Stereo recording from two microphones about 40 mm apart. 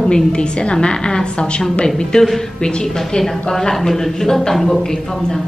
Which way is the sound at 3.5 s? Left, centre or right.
Centre.